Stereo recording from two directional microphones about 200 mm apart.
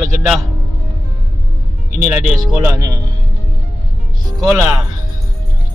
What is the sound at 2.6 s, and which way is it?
Speech, 15° right (ahead or behind).